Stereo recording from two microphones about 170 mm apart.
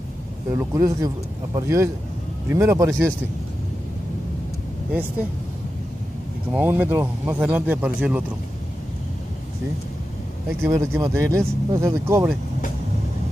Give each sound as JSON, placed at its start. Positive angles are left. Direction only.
{"t": 0.6, "sound": "speech", "side_deg": -20}
{"t": 6.5, "sound": "speech", "side_deg": -10}
{"t": 10.6, "sound": "speech", "side_deg": -15}